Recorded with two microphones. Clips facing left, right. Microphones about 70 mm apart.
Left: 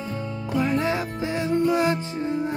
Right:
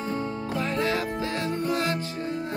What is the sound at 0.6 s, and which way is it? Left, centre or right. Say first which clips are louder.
Music: left 4 dB; centre.